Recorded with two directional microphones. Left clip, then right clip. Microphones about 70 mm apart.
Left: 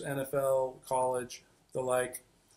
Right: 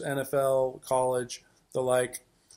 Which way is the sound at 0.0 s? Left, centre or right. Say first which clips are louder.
Right 5 dB; right.